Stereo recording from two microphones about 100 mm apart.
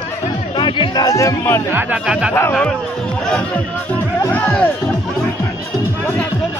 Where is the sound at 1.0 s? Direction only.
35° left (ahead or behind).